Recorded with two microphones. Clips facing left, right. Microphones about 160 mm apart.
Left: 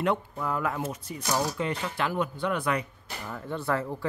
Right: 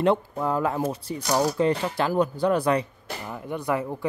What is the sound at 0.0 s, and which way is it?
Speech, 30° right (ahead or behind).